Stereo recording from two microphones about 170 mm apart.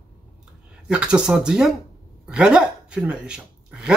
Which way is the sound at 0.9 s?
5° right (ahead or behind).